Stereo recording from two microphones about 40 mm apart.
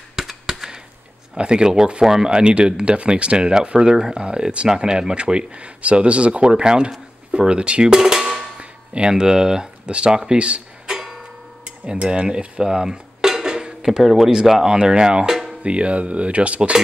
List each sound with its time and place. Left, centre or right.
0.1 s a sound: centre
1.3 s speech: right
7.9 s drum: centre
8.5 s a sound: right
9.2 s speech: centre
10.9 s music: centre
11.8 s cutlery: right
14.0 s speech: centre
15.6 s speech: right